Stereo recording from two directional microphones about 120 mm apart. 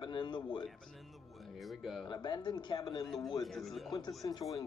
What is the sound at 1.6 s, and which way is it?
Speech, centre (ahead or behind).